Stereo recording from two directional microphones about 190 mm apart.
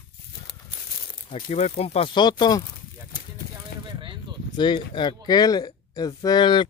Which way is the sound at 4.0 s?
25° right (ahead or behind).